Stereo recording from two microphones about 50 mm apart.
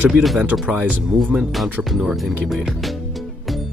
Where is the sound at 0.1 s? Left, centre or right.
Centre.